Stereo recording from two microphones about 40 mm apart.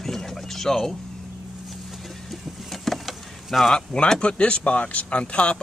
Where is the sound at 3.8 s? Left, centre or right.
Left.